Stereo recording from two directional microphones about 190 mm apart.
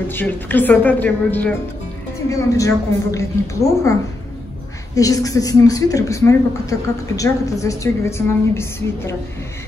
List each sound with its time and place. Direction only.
0.1 s speech: 10° left (ahead or behind)
4.9 s speech: 20° left (ahead or behind)